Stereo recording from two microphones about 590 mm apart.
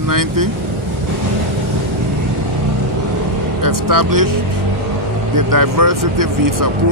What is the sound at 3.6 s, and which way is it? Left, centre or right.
Speech, right.